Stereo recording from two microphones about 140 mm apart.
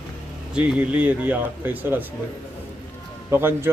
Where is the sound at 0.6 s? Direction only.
10° right (ahead or behind).